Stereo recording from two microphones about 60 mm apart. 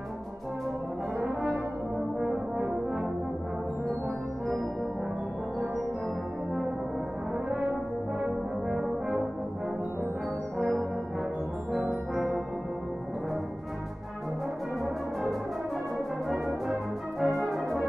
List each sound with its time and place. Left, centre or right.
1.2 s brass instrument: centre
8.2 s brass instrument: centre
10.6 s brass instrument: centre
16.3 s music: centre
17.2 s brass instrument: centre